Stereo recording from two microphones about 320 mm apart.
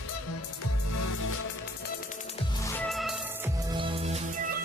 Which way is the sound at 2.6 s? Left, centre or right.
Centre.